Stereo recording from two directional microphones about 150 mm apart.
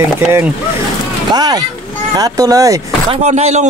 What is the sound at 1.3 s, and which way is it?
Speech, 25° right (ahead or behind).